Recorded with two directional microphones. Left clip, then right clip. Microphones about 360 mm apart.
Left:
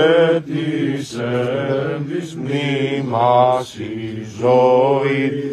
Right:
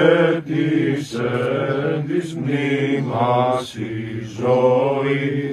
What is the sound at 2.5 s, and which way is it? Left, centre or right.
Mantra, left.